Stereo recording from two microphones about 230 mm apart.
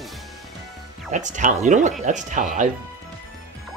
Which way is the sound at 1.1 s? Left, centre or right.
Right.